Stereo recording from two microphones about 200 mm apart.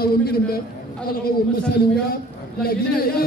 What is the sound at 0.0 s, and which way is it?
Speech, 50° left (ahead or behind).